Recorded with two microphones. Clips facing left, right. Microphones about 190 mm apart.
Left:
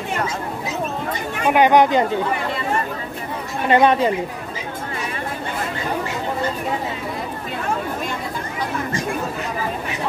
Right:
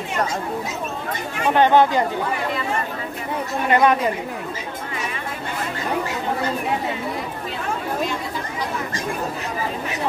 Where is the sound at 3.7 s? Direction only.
25° left (ahead or behind).